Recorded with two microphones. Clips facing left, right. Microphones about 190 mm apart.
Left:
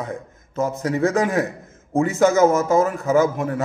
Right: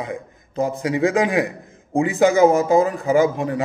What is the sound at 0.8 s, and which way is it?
A man's voice, 15° right (ahead or behind).